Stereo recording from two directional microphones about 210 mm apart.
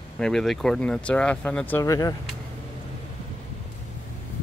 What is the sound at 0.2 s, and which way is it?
Speech, centre (ahead or behind).